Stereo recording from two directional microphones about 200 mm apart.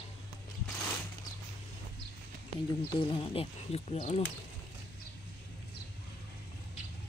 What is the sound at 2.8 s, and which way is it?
Speech, 25° left (ahead or behind).